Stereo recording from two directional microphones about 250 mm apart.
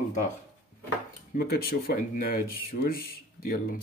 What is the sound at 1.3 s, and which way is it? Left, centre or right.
Speech, left.